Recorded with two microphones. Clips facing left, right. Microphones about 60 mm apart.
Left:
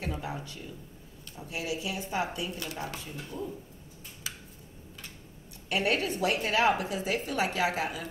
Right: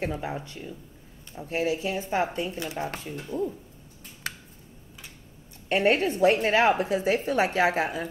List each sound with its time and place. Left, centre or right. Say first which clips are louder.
0.0 s speech: right 5 dB; right
1.3 s a woman's voice: right 8 dB; right
4.2 s a sound: right 6 dB; right
5.7 s a woman's voice: right 6 dB; right